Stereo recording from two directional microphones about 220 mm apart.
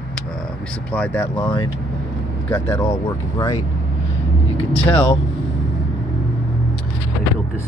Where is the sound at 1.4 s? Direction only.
25° left (ahead or behind).